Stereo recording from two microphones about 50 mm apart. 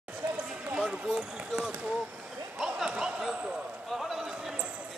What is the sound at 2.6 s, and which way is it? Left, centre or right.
Basketball bounce, centre.